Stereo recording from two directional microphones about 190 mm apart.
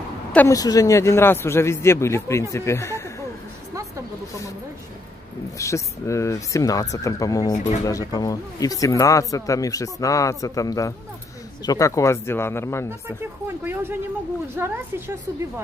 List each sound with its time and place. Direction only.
0.3 s speech: 10° left (ahead or behind)
5.6 s speech: 15° left (ahead or behind)
7.5 s speech: 40° left (ahead or behind)
7.8 s speech: 20° left (ahead or behind)
14.5 s a woman's voice: 10° right (ahead or behind)